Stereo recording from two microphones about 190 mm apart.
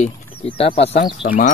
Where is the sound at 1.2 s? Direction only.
45° left (ahead or behind).